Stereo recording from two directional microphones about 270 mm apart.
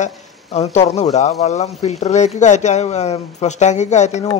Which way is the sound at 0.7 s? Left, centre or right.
Left.